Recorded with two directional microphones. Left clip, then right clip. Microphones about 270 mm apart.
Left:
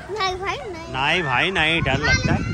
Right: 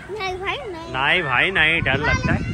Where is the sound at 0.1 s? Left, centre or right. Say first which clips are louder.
Left 2 dB; centre.